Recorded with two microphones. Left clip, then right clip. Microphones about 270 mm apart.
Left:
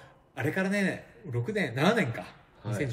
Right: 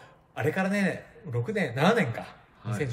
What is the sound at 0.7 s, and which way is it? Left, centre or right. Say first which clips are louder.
A man's voice: right 1 dB; centre.